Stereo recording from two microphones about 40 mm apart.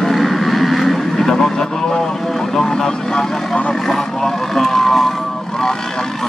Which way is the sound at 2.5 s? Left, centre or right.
Centre.